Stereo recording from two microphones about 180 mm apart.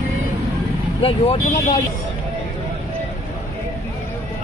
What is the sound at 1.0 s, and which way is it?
Speech, 30° left (ahead or behind).